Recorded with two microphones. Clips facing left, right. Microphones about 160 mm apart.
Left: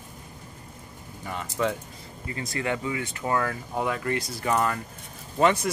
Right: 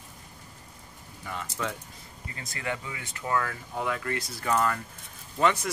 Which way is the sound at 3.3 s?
35° left (ahead or behind).